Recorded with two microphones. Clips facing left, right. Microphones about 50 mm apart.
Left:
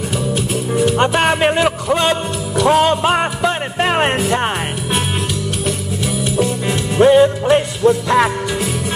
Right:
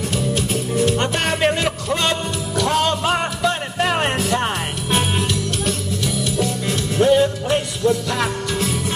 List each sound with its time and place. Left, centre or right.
0.3 s music: centre
0.9 s music: left
5.7 s music: centre